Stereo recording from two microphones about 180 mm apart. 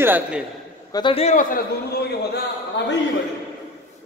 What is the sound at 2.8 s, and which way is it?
Speech, 75° left (ahead or behind).